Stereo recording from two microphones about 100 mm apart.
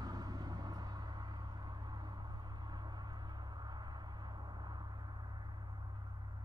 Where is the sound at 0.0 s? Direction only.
40° right (ahead or behind).